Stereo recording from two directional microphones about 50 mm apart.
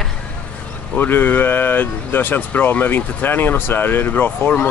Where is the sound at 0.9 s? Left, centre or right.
Left.